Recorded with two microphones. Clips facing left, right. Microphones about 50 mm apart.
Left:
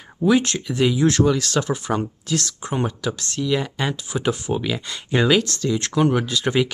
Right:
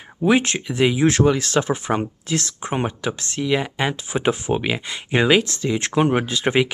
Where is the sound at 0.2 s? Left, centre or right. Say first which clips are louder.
Even; right.